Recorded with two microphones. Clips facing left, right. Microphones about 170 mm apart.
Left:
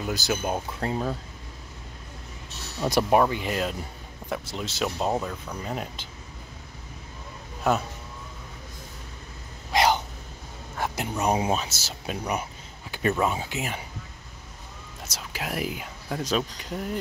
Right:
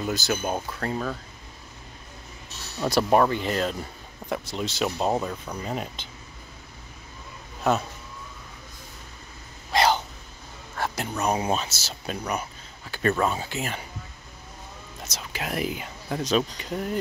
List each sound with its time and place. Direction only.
0.0 s speech: 10° left (ahead or behind)
0.7 s speech: 20° left (ahead or behind)
2.8 s speech: 10° left (ahead or behind); by 5.6 s 10° right (ahead or behind)
5.6 s speech: centre (ahead or behind)
9.7 s a sound: 15° left (ahead or behind)
10.8 s speech: 15° left (ahead or behind)
15.0 s speech: 5° left (ahead or behind)